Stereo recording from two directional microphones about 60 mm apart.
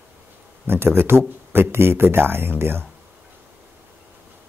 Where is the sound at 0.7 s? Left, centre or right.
Right.